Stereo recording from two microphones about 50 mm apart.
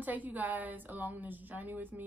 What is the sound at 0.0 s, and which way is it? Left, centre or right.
A woman's voice, right.